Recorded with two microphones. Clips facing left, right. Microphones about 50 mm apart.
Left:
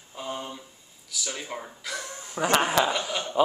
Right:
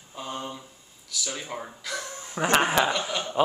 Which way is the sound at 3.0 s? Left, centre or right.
Centre.